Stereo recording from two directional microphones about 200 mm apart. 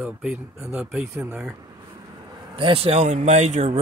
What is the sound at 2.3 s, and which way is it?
Speech, 25° right (ahead or behind).